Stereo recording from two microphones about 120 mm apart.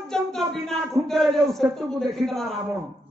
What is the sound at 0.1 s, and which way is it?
A man's voice, 5° left (ahead or behind).